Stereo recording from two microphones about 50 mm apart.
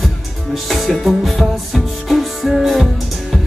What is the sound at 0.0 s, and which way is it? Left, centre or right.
Music, centre.